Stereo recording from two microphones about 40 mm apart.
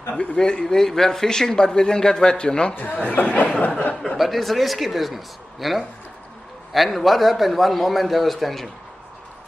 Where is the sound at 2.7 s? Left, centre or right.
Left.